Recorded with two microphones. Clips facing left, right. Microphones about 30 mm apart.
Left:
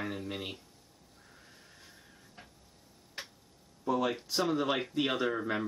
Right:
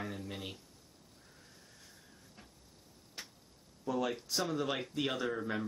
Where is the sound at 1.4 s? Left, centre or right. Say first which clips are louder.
Left 4 dB; left.